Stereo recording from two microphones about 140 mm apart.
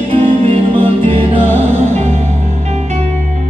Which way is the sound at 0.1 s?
45° right (ahead or behind).